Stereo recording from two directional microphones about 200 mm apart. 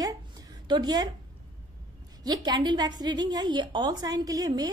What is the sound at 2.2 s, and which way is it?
A woman's voice, 20° right (ahead or behind).